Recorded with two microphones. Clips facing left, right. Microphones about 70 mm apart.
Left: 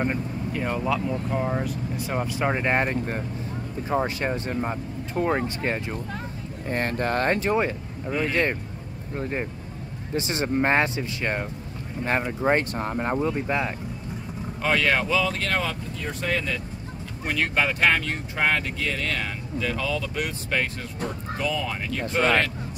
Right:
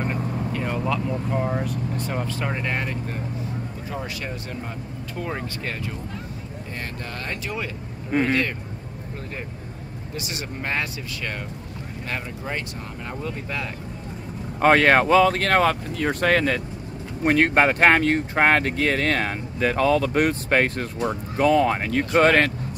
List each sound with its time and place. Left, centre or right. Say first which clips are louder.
0.0 s vehicle: even; centre
0.6 s speech: left 2 dB; centre; by 5.8 s left
6.7 s speech: left 10 dB; left
8.1 s speech: right 5 dB; right
10.1 s speech: left 8 dB; left
13.2 s speech: left 5 dB; left
14.6 s speech: right 7 dB; right
17.2 s speech: right 7 dB; right